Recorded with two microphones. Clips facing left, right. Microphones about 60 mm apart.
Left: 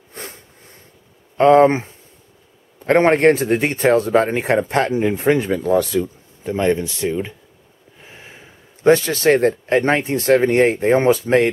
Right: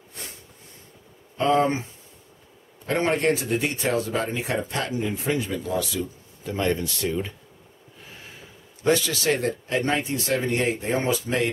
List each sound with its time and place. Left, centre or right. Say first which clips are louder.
0.1 s a sound: left 7 dB; left
1.4 s speech: left 10 dB; left
2.9 s speech: left 9 dB; left
6.4 s speech: left 7 dB; left